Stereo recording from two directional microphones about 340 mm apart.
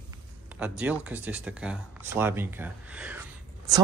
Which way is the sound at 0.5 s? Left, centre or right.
Centre.